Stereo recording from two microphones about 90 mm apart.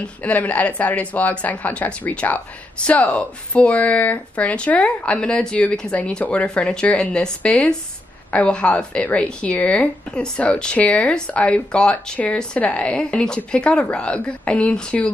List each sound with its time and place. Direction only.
0.0 s speech: 15° left (ahead or behind)